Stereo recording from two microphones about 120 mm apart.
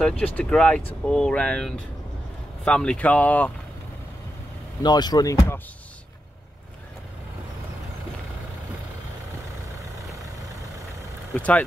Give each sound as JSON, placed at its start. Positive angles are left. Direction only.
{"t": 0.0, "sound": "speech", "side_deg": 10}
{"t": 4.8, "sound": "speech", "side_deg": 35}
{"t": 11.3, "sound": "speech", "side_deg": 10}